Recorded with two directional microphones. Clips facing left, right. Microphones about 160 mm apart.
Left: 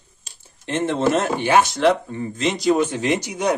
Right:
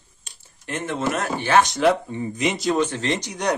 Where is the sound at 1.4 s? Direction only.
15° left (ahead or behind).